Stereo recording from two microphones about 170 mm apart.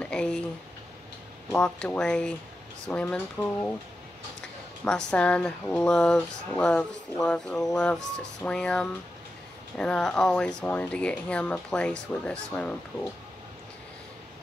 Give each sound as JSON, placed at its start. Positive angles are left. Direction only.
{"t": 0.0, "sound": "speech", "side_deg": 5}
{"t": 1.5, "sound": "speech", "side_deg": 5}